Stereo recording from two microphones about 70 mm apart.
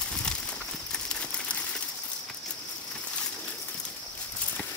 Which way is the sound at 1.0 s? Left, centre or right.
Centre.